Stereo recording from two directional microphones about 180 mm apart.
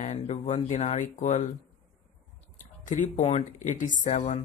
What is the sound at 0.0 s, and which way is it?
Speech, 40° left (ahead or behind).